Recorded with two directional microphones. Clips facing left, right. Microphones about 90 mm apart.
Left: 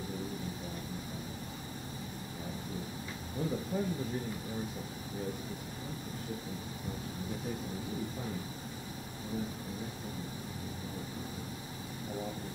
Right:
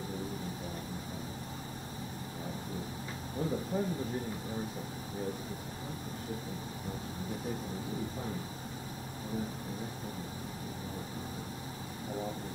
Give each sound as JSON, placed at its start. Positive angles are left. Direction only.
{"t": 3.7, "sound": "speech", "side_deg": -40}